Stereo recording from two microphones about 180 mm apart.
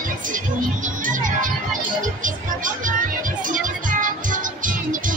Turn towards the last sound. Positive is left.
turn(degrees=-50)  # may be behind; listen again after turning